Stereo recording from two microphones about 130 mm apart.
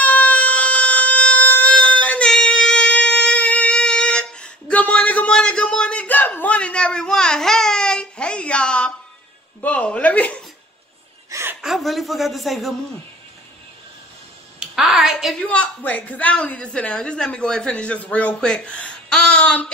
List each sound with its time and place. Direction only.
0.0 s a sound: 10° left (ahead or behind)
9.6 s a woman's voice: 10° left (ahead or behind)
11.2 s chuckle: 20° right (ahead or behind)
11.6 s a man's voice: centre (ahead or behind)
14.6 s a woman's voice: 5° right (ahead or behind)